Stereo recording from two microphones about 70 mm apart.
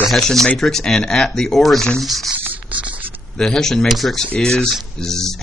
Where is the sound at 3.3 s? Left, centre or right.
Centre.